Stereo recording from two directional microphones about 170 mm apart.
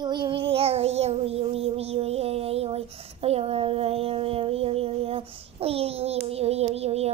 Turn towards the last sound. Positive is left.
turn(degrees=-35)  # may be behind; listen again after turning